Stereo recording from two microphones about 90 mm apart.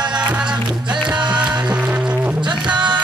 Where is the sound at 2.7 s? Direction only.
55° right (ahead or behind).